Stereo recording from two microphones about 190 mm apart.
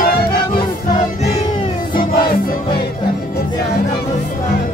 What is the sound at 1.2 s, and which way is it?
Music, 30° left (ahead or behind).